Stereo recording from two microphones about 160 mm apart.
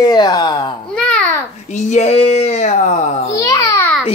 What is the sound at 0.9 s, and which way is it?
Speech, 5° left (ahead or behind).